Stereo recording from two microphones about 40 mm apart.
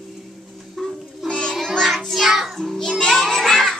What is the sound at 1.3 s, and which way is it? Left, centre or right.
Music, centre.